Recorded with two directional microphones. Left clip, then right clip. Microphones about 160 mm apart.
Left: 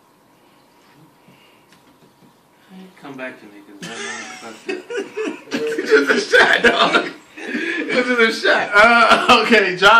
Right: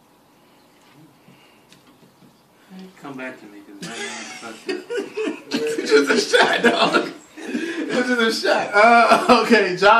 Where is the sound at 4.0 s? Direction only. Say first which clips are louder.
Left 2 dB; 30° right (ahead or behind).